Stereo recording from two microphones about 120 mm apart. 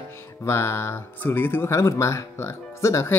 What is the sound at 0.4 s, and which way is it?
Speech, 20° left (ahead or behind).